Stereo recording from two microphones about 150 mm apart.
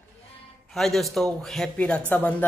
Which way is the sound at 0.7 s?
Centre (ahead or behind).